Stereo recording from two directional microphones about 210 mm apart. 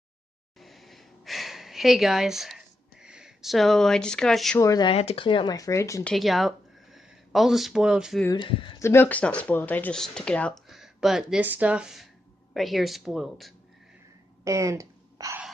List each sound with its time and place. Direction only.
0.6 s a sound: centre (ahead or behind)
4.6 s speech: 20° left (ahead or behind)
6.1 s speech: centre (ahead or behind)
8.3 s speech: 25° left (ahead or behind)
8.8 s speech: 10° left (ahead or behind)
14.4 s a sound: 15° right (ahead or behind)